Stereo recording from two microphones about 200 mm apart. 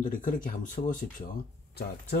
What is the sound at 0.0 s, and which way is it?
Speech, 40° left (ahead or behind).